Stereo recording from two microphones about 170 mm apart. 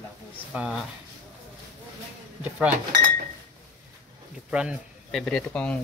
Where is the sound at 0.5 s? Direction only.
5° right (ahead or behind).